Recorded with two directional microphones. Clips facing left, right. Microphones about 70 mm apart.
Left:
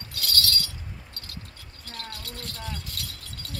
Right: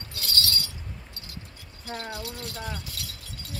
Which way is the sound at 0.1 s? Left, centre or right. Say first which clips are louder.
Left 1 dB; right.